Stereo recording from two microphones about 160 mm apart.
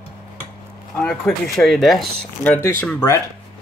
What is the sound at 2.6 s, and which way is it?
Speech, 15° left (ahead or behind).